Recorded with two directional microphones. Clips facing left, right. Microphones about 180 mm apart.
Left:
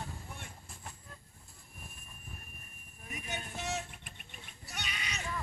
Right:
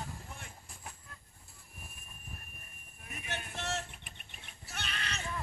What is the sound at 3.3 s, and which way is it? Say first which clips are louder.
Male singing: even; 10° left (ahead or behind).